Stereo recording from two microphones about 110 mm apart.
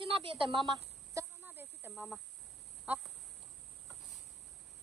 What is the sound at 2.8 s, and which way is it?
Speech, 5° right (ahead or behind).